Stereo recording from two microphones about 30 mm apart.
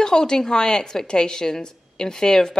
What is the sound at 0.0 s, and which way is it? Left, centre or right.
A woman's voice, left.